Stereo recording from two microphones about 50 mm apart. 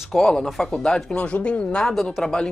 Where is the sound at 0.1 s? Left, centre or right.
Centre.